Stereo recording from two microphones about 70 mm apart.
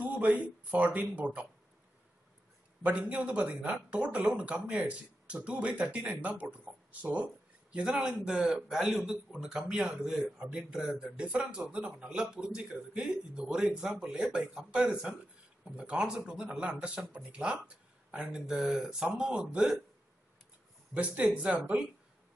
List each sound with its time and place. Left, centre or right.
0.0 s speech: right
2.8 s a man's voice: right
20.9 s speech: centre